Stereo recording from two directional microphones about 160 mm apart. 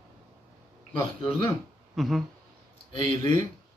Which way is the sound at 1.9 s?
Centre (ahead or behind).